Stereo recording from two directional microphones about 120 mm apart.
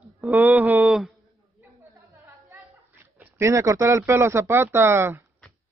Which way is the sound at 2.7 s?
15° right (ahead or behind).